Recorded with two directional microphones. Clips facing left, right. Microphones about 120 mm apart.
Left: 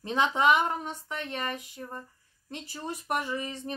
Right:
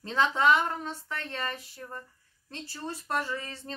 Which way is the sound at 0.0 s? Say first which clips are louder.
Even; 15° left (ahead or behind).